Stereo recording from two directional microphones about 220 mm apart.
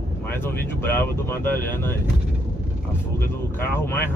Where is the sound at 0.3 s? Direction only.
10° left (ahead or behind).